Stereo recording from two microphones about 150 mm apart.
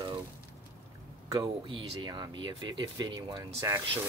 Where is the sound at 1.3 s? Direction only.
30° right (ahead or behind).